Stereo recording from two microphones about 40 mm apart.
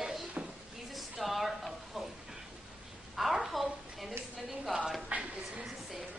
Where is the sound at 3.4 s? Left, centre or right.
Centre.